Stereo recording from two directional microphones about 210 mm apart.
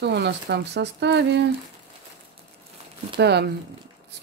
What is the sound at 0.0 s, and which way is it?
Speech, 55° right (ahead or behind).